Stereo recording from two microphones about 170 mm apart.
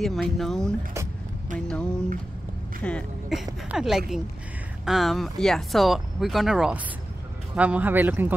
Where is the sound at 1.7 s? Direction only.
5° left (ahead or behind).